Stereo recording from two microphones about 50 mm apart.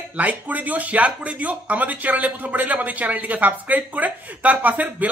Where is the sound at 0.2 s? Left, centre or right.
Right.